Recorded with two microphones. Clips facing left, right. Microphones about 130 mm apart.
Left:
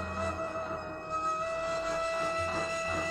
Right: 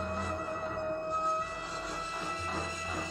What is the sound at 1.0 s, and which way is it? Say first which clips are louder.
Music: right 2 dB; 15° right (ahead or behind).